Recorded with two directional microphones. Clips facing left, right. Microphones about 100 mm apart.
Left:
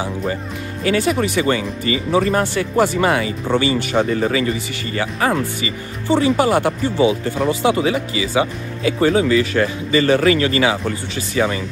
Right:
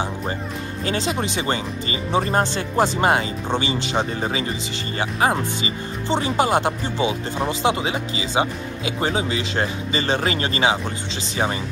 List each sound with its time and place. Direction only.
0.8 s speech: 20° right (ahead or behind)